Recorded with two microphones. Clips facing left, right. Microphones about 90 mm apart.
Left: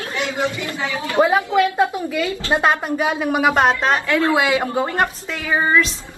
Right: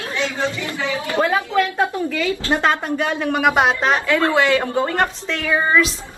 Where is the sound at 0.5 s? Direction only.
20° left (ahead or behind).